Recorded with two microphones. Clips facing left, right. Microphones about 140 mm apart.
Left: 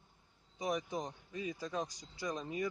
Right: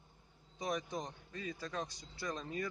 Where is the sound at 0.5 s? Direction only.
10° left (ahead or behind).